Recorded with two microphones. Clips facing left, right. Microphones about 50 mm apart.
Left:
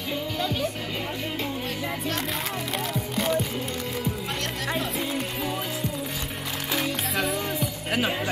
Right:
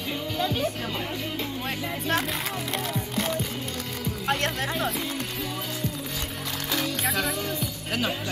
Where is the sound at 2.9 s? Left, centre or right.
Centre.